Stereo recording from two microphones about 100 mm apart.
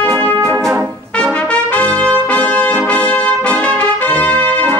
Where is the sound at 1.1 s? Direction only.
10° left (ahead or behind).